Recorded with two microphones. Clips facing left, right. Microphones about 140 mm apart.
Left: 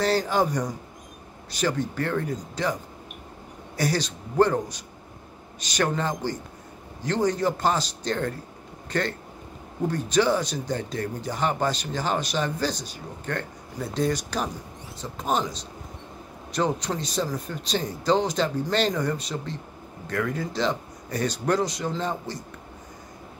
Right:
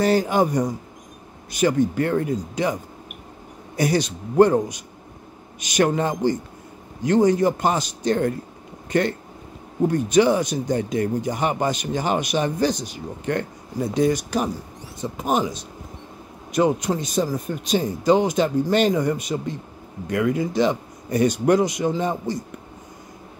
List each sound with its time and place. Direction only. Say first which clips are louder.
0.0 s speech: right 4 dB; 10° right (ahead or behind)
3.7 s speech: right 5 dB; 15° right (ahead or behind)
9.8 s speech: right 5 dB; 15° right (ahead or behind)